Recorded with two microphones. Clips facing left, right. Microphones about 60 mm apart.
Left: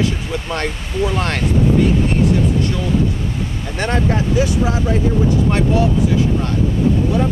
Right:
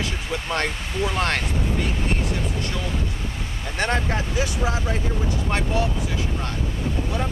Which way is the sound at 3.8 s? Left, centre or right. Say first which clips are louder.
Left 5 dB; centre.